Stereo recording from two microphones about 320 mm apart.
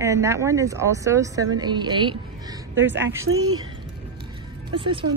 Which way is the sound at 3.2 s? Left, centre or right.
Right.